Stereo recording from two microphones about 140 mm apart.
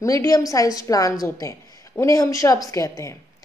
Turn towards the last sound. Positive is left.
turn(degrees=20)  # may be behind; listen again after turning